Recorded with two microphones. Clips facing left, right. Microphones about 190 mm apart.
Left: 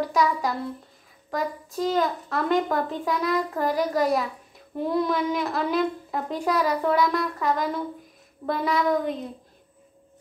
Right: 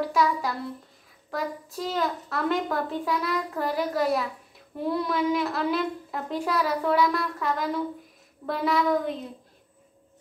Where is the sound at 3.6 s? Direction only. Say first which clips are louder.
Left 2 dB; 45° left (ahead or behind).